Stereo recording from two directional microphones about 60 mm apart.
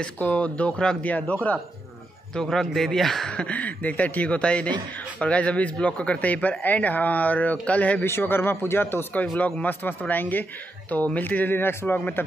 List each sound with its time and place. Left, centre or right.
0.2 s speech: left
2.3 s speech: centre
3.3 s speech: centre
8.0 s speech: left
9.4 s speech: left